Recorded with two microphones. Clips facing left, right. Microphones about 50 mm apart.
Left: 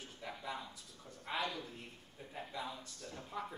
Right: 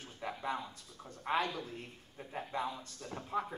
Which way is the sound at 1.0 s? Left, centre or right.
Right.